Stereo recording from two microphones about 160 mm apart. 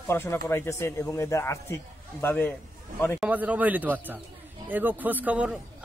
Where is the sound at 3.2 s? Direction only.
10° right (ahead or behind).